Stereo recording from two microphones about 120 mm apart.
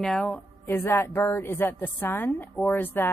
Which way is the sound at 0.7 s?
20° left (ahead or behind).